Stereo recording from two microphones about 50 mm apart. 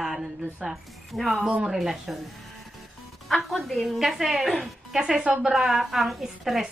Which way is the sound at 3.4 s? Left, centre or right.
Centre.